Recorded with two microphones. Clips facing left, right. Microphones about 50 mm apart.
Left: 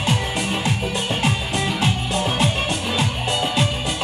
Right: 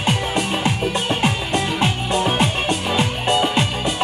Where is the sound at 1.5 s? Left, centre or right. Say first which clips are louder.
Right 2 dB; centre.